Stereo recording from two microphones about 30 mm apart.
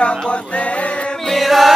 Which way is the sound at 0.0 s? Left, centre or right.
Left.